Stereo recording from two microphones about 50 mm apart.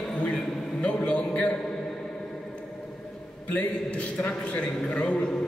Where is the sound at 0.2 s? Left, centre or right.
Left.